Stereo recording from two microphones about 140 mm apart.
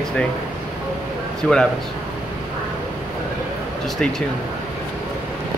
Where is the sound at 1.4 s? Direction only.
10° left (ahead or behind).